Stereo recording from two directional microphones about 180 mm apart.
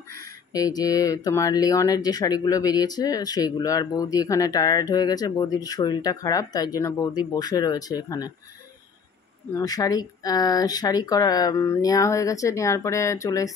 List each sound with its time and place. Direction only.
0.2 s speech: 20° left (ahead or behind)
9.5 s speech: 20° left (ahead or behind)